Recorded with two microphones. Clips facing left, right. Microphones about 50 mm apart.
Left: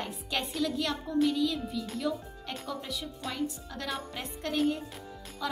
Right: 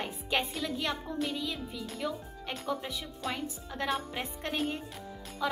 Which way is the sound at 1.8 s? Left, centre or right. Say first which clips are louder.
Left 3 dB; centre.